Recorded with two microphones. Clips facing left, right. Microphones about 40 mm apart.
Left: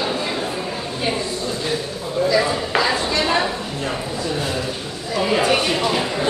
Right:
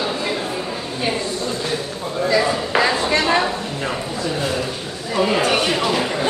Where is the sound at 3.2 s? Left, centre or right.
Centre.